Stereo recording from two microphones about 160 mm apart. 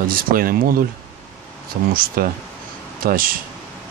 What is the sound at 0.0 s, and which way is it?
Speech, 65° right (ahead or behind).